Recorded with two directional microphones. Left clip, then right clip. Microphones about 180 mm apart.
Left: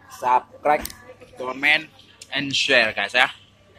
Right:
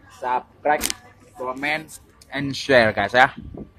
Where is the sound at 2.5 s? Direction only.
25° right (ahead or behind).